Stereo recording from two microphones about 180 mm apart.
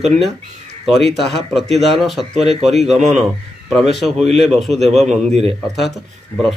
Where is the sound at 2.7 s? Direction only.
Centre (ahead or behind).